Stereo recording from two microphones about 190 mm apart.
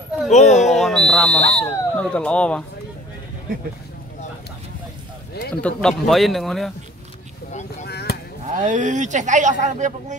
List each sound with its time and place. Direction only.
0.3 s speech: 35° left (ahead or behind)
0.6 s speech: centre (ahead or behind)
5.5 s speech: 5° left (ahead or behind)
7.8 s chop: 55° left (ahead or behind)
8.5 s speech: 40° right (ahead or behind)